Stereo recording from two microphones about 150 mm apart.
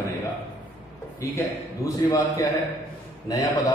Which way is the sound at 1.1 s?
20° left (ahead or behind).